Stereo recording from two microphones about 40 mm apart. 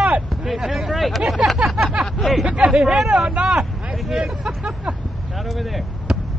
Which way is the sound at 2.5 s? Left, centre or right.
Right.